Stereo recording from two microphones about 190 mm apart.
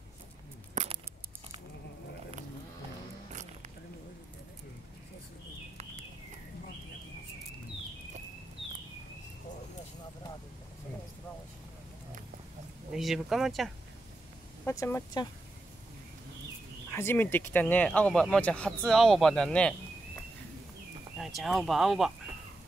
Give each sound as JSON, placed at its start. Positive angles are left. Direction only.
{"t": 0.8, "sound": "a sound", "side_deg": -40}
{"t": 12.9, "sound": "speech", "side_deg": 0}
{"t": 14.6, "sound": "speech", "side_deg": 15}
{"t": 16.9, "sound": "speech", "side_deg": 10}
{"t": 21.2, "sound": "speech", "side_deg": 0}